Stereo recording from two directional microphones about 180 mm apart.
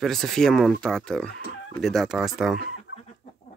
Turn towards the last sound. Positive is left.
turn(degrees=65)  # may be behind; listen again after turning